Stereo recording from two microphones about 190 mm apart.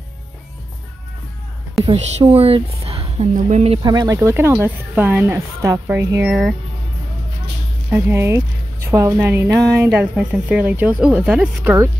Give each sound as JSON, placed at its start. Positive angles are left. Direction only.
{"t": 1.9, "sound": "speech", "side_deg": -35}
{"t": 2.8, "sound": "a sound", "side_deg": -30}
{"t": 3.3, "sound": "speech", "side_deg": -40}
{"t": 3.8, "sound": "speech", "side_deg": -20}
{"t": 7.9, "sound": "speech", "side_deg": -15}